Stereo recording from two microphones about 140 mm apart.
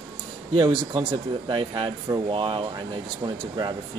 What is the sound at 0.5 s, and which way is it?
Speech, 35° right (ahead or behind).